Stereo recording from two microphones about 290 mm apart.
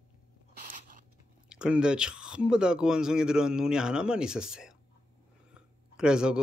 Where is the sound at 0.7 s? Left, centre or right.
Right.